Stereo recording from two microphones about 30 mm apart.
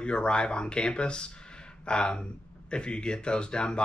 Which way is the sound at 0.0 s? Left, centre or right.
Left.